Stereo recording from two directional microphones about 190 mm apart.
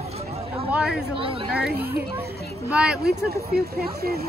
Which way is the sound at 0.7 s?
5° right (ahead or behind).